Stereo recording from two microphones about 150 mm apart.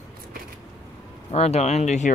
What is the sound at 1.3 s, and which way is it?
Speech, 45° left (ahead or behind).